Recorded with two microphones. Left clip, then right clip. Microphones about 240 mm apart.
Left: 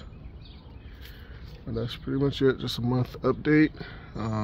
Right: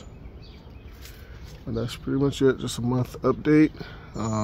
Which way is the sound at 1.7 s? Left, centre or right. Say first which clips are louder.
Right 3 dB; centre.